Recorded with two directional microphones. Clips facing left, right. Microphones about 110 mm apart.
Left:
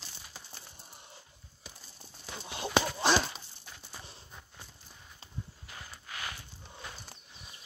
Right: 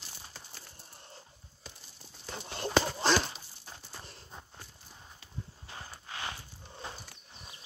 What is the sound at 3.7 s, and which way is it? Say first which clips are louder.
Horse: right 3 dB; 35° right (ahead or behind).